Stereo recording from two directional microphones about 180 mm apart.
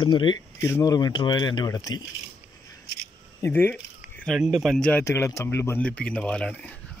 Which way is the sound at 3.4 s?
10° left (ahead or behind).